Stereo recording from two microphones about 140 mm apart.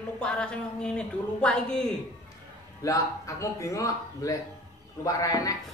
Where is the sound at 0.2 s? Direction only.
5° left (ahead or behind).